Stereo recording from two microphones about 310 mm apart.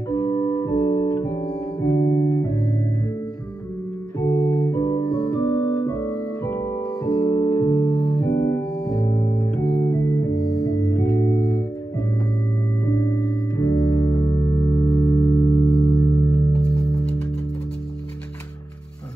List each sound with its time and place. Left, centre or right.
0.1 s music: centre
4.2 s keyboard: centre
10.5 s music: centre
13.6 s music: centre